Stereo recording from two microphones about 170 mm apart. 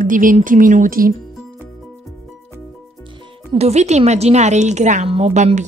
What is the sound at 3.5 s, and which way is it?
A woman's voice, 40° right (ahead or behind).